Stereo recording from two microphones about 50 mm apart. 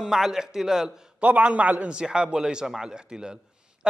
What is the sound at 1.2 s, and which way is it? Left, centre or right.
A man's voice, right.